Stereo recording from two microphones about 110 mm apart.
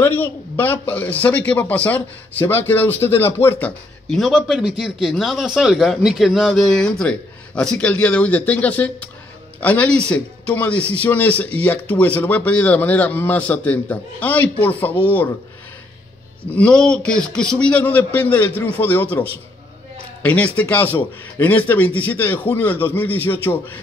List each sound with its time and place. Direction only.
0.0 s a man's voice: 15° left (ahead or behind)
4.1 s a man's voice: centre (ahead or behind)
16.5 s a man's voice: 10° left (ahead or behind)